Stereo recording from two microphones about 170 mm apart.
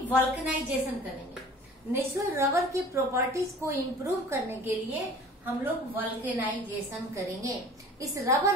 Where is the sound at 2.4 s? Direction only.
15° right (ahead or behind).